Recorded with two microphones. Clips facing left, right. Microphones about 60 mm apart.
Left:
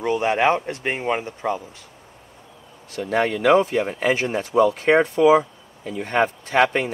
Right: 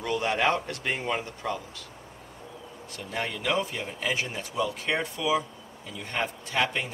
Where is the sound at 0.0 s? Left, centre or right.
Left.